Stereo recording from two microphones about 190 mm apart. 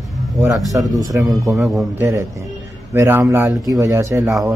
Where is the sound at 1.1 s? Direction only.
15° right (ahead or behind).